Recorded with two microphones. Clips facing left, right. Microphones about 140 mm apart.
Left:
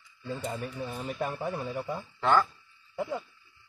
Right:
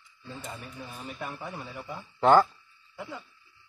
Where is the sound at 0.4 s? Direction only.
45° left (ahead or behind).